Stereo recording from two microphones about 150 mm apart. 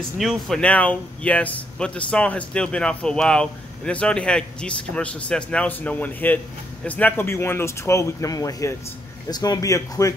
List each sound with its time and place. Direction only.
0.2 s speech: centre (ahead or behind); by 10.1 s 20° left (ahead or behind)